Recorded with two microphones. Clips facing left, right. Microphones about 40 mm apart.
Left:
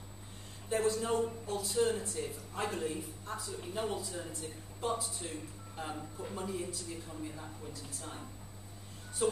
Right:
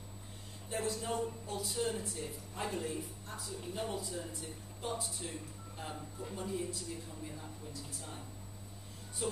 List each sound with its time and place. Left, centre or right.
0.7 s speech: centre
4.8 s speech: centre
9.2 s speech: centre